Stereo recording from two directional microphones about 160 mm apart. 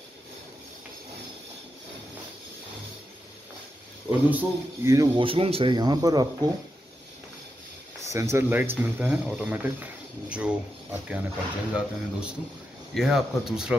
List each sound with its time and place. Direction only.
4.3 s speech: 15° right (ahead or behind)
5.2 s speech: 35° right (ahead or behind)
8.0 s speech: 20° right (ahead or behind); by 13.7 s 5° right (ahead or behind)